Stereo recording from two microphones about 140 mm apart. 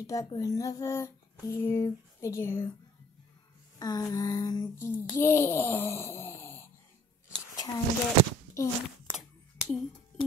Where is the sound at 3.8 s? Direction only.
25° left (ahead or behind).